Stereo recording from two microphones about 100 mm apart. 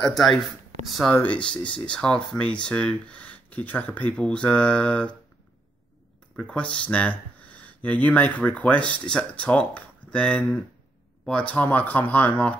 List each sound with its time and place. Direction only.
0.0 s speech: 5° left (ahead or behind)
1.1 s speech: 15° left (ahead or behind)
6.3 s speech: 10° left (ahead or behind)